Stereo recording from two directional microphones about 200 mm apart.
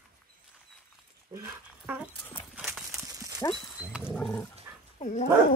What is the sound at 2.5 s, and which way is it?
Horse, 10° right (ahead or behind).